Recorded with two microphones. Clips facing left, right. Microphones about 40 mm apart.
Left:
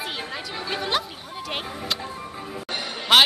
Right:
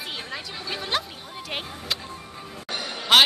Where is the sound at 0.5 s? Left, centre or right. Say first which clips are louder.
Left 3 dB; centre.